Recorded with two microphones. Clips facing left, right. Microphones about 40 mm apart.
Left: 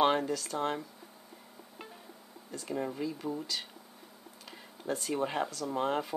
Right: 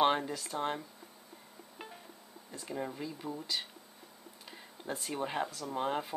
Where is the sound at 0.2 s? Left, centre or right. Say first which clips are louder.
Left 5 dB; right.